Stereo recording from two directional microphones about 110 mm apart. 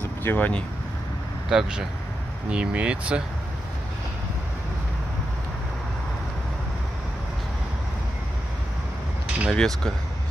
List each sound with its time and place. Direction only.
0.2 s speech: 20° left (ahead or behind)
1.5 s speech: 5° right (ahead or behind)
9.5 s speech: 5° left (ahead or behind)